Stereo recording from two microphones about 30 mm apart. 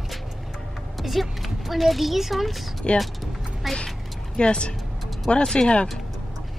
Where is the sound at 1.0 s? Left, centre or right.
Centre.